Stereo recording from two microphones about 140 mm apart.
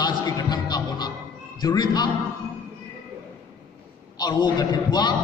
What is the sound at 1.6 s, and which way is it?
Speech, 30° left (ahead or behind).